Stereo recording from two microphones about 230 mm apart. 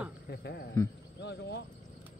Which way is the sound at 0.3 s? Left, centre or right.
Left.